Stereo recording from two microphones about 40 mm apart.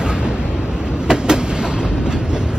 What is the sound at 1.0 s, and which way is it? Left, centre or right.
Train, centre.